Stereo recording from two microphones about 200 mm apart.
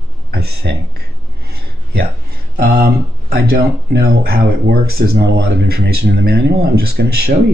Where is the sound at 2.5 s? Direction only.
50° right (ahead or behind).